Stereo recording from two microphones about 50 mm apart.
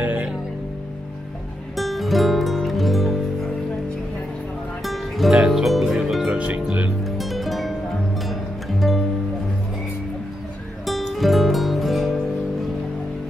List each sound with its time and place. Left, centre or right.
0.0 s music: right
1.8 s music: centre
4.8 s music: centre
6.3 s music: right
7.1 s music: centre
10.9 s music: centre